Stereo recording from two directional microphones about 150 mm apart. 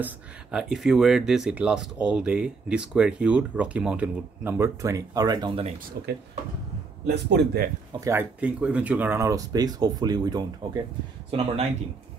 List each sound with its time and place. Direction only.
0.0 s speech: 5° right (ahead or behind); by 5.5 s 25° right (ahead or behind)
6.0 s speech: 90° right
8.0 s speech: 15° right (ahead or behind); by 11.6 s 40° right (ahead or behind)